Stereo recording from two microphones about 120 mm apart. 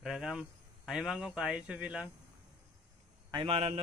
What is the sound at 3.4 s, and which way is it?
Speech, 55° right (ahead or behind).